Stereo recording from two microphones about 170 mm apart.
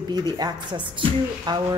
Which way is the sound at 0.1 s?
25° right (ahead or behind).